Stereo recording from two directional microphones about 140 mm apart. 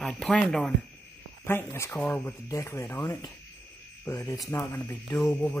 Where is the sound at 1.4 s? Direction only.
15° left (ahead or behind).